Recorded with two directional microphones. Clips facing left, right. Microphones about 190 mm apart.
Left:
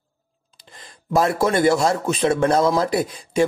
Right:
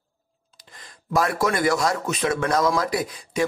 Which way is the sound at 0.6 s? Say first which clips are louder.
Left 3 dB; 25° left (ahead or behind).